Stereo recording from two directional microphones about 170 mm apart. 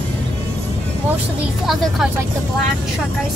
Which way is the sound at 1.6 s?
Centre (ahead or behind).